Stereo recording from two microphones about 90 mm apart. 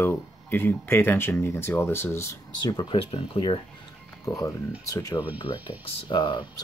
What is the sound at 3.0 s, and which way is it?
Speech, 90° left.